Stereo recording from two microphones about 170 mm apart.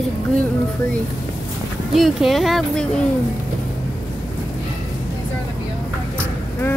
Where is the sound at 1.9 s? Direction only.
Centre (ahead or behind).